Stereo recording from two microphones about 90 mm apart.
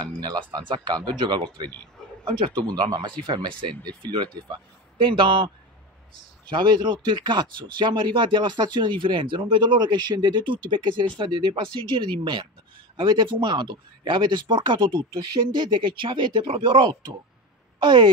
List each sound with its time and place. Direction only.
0.0 s speech: 55° right (ahead or behind)
6.5 s speech: 55° right (ahead or behind)